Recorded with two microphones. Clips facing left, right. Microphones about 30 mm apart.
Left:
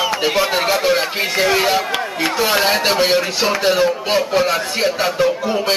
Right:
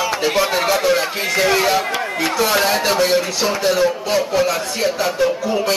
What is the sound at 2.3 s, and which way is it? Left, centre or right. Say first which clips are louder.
Speech: left 1 dB; left.